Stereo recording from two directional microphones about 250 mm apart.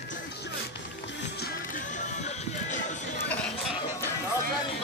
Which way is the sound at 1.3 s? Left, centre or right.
Left.